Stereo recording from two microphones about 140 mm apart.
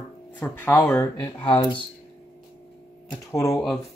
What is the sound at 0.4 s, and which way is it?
Speech, 15° left (ahead or behind).